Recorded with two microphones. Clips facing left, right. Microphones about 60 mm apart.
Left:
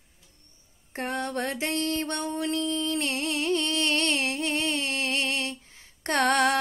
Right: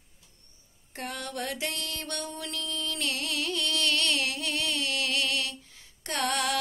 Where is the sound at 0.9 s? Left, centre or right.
Left.